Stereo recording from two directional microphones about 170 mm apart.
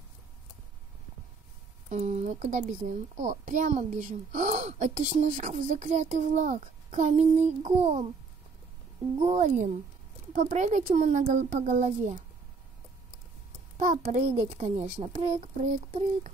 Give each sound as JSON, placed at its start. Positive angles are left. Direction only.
{"t": 1.9, "sound": "a child's voice", "side_deg": -40}
{"t": 9.2, "sound": "a child's voice", "side_deg": -45}
{"t": 13.7, "sound": "a child's voice", "side_deg": -50}
{"t": 14.6, "sound": "speech", "side_deg": -40}